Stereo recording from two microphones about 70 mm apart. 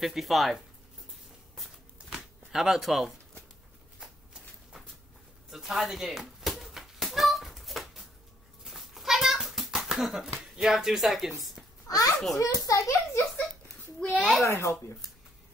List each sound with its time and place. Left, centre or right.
0.0 s speech: centre
2.0 s a sound: centre
2.5 s speech: centre
4.0 s walk: centre
5.5 s a sound: centre
10.4 s speech: centre
11.9 s a child's voice: left
14.0 s a child's voice: centre
14.4 s a child's voice: left